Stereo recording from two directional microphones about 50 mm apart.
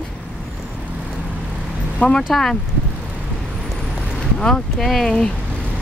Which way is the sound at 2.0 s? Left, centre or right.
Left.